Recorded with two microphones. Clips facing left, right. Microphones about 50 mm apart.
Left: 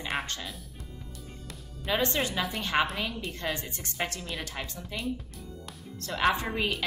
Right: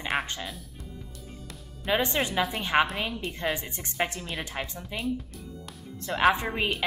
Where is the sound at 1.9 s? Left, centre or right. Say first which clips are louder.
Right 2 dB; centre.